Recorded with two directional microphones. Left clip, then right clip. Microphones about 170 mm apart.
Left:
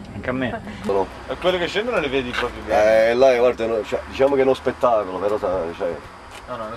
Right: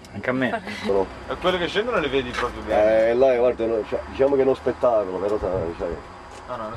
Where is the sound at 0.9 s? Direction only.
20° left (ahead or behind).